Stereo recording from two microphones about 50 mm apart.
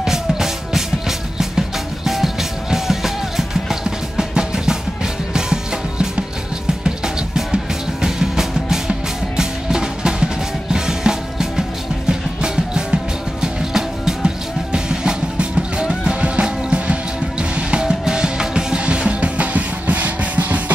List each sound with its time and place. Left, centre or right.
0.0 s music: centre
2.0 s music: centre
7.3 s music: centre; by 20.7 s right